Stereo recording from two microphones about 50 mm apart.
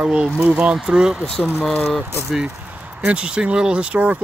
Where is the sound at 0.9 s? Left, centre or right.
Centre.